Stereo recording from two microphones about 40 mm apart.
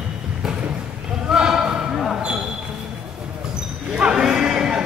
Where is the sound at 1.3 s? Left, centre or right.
Centre.